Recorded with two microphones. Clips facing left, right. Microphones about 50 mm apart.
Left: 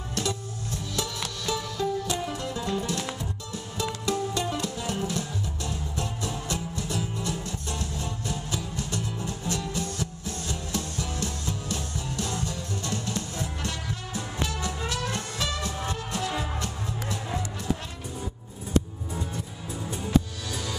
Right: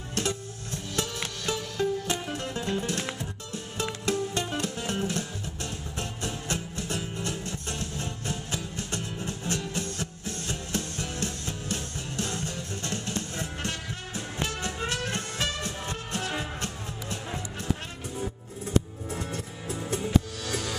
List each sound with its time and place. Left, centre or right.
0.1 s music: right
19.1 s music: right